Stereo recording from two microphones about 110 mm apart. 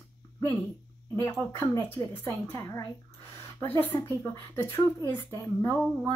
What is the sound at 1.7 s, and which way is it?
Speech, 25° left (ahead or behind).